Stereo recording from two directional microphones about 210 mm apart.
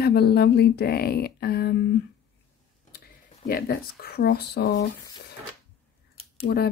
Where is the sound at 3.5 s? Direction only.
45° left (ahead or behind).